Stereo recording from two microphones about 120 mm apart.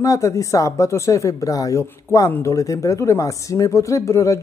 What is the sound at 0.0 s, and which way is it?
Speech, 25° left (ahead or behind).